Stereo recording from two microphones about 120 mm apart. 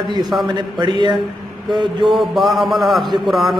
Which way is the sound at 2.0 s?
Centre (ahead or behind).